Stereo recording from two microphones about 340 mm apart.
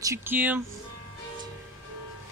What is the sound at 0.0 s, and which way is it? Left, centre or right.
Speech, centre.